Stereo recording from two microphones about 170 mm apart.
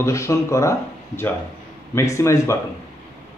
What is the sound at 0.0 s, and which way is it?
Speech, 15° left (ahead or behind).